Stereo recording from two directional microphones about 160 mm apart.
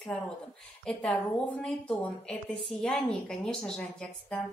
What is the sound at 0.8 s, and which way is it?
A woman's voice, 5° left (ahead or behind).